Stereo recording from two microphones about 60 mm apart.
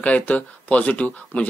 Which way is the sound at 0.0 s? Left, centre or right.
Left.